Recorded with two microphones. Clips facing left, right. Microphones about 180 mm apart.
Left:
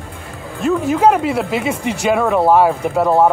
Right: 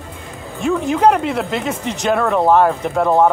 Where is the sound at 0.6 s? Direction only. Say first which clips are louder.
Left 1 dB; centre (ahead or behind).